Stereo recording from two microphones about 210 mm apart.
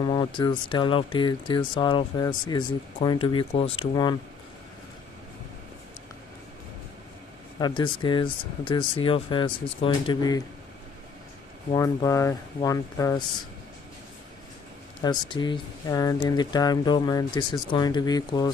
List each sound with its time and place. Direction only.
0.0 s speech: 25° left (ahead or behind)
7.5 s speech: 20° left (ahead or behind)
11.7 s speech: 15° left (ahead or behind)
15.0 s speech: 20° left (ahead or behind)